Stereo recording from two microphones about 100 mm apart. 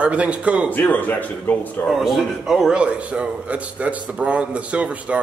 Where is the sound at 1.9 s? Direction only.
Centre (ahead or behind).